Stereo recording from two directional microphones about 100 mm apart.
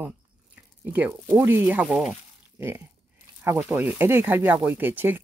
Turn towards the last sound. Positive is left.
turn(degrees=-20)  # may be behind; listen again after turning